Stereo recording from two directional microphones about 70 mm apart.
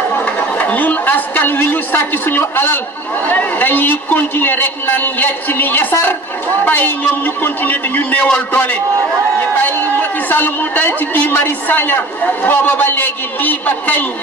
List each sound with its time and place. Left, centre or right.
0.1 s a man's voice: left